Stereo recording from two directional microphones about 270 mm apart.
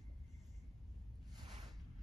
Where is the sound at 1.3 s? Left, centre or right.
Centre.